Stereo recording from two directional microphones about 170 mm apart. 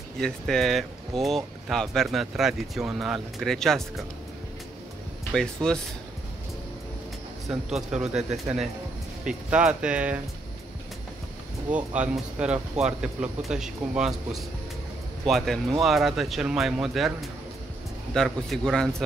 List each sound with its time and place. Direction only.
0.2 s speech: centre (ahead or behind)
5.3 s speech: 5° left (ahead or behind)
7.4 s speech: centre (ahead or behind)
11.7 s speech: 5° right (ahead or behind)